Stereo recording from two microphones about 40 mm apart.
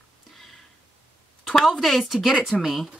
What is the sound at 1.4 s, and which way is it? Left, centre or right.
Speech, centre.